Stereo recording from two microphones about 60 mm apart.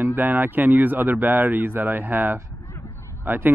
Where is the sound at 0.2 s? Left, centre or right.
Right.